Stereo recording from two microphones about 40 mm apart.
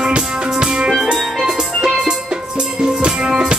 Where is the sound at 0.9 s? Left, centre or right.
Centre.